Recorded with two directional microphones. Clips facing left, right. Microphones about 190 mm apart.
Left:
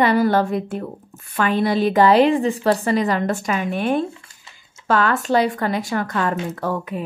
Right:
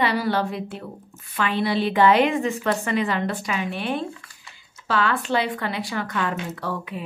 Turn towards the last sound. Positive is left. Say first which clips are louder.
# left 5 dB
turn(degrees=45)  # may be behind; listen again after turning